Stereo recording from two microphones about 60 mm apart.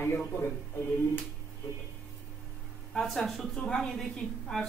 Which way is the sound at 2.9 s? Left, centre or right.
Centre.